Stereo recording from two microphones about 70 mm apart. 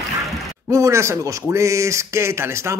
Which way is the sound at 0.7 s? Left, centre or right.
Right.